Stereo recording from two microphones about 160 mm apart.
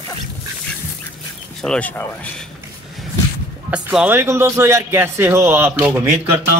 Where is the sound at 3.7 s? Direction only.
5° right (ahead or behind).